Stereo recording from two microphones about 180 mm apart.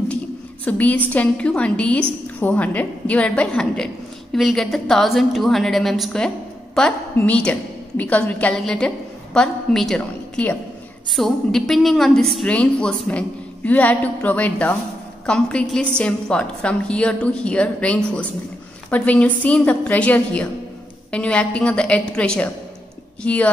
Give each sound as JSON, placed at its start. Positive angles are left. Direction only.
{"t": 0.7, "sound": "a woman's voice", "side_deg": 10}